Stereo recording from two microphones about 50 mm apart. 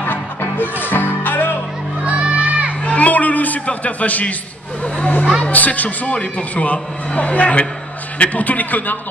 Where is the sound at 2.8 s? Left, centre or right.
Left.